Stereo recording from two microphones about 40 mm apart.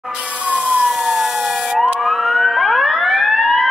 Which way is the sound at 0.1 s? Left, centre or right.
Right.